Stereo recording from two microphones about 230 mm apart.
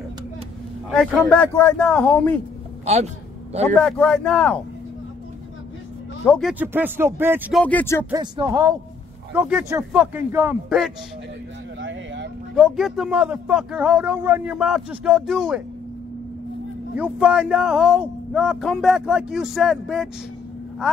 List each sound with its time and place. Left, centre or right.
0.9 s a man's voice: centre
2.8 s a man's voice: right
3.6 s a man's voice: centre
6.2 s a man's voice: centre
6.6 s speech: centre
7.6 s speech: centre
8.1 s speech: centre
11.8 s vehicle: right
12.5 s a man's voice: centre
16.9 s a man's voice: centre